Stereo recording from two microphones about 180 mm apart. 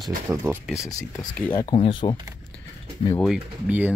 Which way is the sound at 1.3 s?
10° left (ahead or behind).